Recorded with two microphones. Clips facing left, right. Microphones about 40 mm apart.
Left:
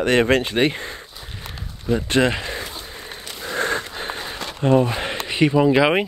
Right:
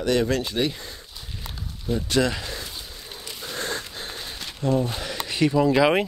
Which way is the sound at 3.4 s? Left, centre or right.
Left.